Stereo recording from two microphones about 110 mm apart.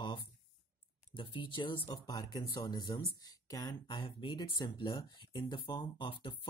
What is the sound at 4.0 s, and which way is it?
Speech, 50° left (ahead or behind).